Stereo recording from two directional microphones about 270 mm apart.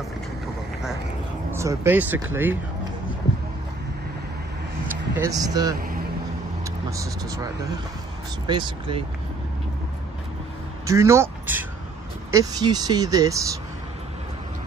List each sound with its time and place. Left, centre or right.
1.5 s speech: centre
5.1 s speech: centre
10.9 s speech: centre